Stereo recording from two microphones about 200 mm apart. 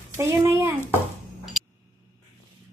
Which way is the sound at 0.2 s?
10° right (ahead or behind).